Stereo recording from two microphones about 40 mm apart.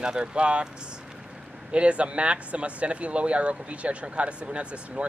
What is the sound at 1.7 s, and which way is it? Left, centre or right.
Speech, right.